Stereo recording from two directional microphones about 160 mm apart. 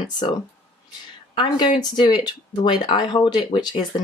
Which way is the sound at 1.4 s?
30° left (ahead or behind).